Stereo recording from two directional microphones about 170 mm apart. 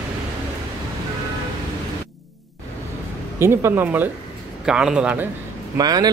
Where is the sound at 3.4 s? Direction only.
15° right (ahead or behind).